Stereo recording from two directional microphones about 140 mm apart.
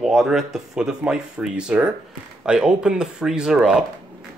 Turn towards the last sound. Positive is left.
turn(degrees=-5)  # may be behind; listen again after turning